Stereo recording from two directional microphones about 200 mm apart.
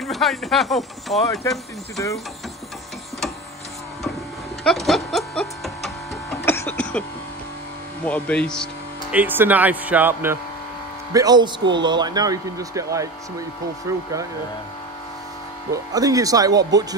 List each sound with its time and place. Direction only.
0.0 s speech: centre (ahead or behind)
4.6 s music: centre (ahead or behind)
6.4 s a sound: 10° left (ahead or behind)
8.0 s speech: 5° left (ahead or behind)
9.1 s a man's voice: 10° right (ahead or behind)
15.7 s speech: 20° right (ahead or behind)